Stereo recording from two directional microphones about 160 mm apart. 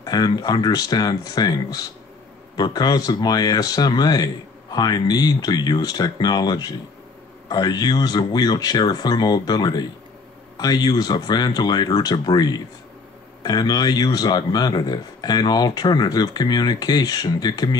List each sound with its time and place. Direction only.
0.0 s speech: 25° left (ahead or behind)